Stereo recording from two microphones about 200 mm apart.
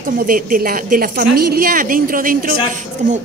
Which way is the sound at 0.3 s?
45° right (ahead or behind).